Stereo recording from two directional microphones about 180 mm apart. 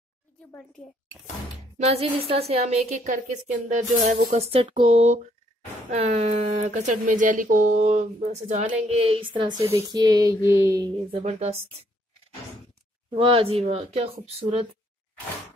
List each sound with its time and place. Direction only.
1.9 s speech: 35° right (ahead or behind); by 10.9 s 15° right (ahead or behind)
11.1 s speech: 35° right (ahead or behind)
13.1 s speech: 30° right (ahead or behind)